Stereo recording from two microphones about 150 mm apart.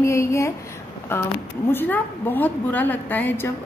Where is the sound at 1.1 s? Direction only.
15° left (ahead or behind).